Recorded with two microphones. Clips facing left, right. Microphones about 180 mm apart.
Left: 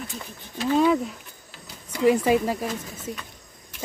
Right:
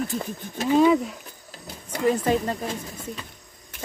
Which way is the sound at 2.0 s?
10° left (ahead or behind).